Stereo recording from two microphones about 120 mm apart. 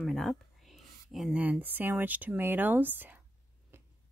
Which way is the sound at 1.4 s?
15° right (ahead or behind).